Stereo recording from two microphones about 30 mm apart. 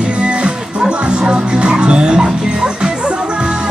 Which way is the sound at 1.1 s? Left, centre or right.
Right.